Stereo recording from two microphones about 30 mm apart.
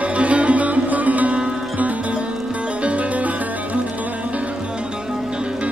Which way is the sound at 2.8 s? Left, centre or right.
Right.